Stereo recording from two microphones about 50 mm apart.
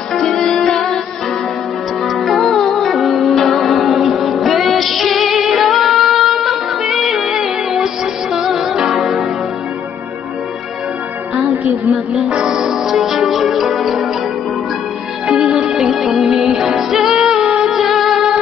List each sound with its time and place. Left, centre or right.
0.1 s music: centre
2.0 s music: centre
11.9 s music: centre
12.3 s music: centre
12.5 s music: centre
15.2 s music: centre